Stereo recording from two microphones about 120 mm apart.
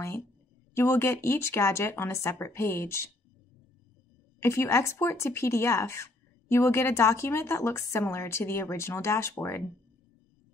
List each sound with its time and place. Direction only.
0.7 s speech: 20° left (ahead or behind)
4.4 s speech: 20° left (ahead or behind)